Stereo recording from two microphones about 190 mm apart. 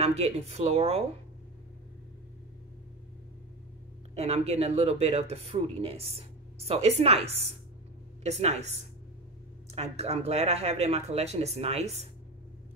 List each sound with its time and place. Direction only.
0.0 s speech: 35° right (ahead or behind)
4.1 s speech: 35° right (ahead or behind)